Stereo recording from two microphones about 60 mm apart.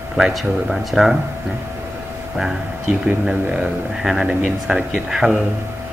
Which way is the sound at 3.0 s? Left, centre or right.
Centre.